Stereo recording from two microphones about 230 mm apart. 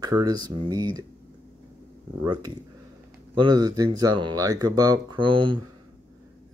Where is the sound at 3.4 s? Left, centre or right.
Centre.